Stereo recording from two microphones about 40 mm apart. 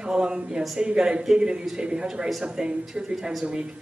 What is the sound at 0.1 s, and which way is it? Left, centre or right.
A man's voice, right.